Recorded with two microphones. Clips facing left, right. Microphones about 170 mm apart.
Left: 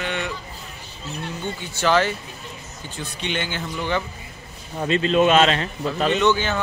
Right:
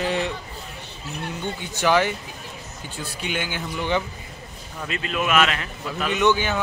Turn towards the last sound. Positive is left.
turn(degrees=-15)  # may be behind; listen again after turning